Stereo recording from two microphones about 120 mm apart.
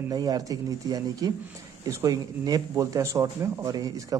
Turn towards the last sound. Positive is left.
turn(degrees=-30)  # may be behind; listen again after turning